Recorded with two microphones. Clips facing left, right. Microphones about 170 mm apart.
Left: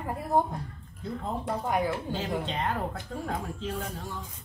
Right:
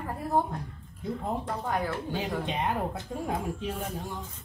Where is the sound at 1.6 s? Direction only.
15° left (ahead or behind).